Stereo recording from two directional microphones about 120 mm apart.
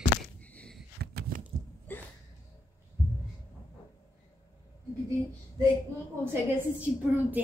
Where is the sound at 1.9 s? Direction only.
15° left (ahead or behind).